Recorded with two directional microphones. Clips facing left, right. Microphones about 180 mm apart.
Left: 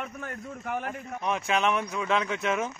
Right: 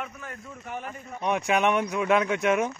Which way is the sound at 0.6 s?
60° left (ahead or behind).